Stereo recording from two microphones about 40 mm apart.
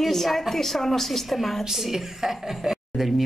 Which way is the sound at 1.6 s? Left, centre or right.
Centre.